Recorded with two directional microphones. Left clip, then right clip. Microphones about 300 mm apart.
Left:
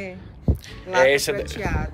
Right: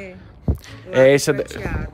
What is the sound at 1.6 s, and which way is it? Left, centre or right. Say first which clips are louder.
Speech: left 2 dB; centre.